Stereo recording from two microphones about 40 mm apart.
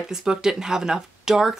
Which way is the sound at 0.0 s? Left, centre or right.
Centre.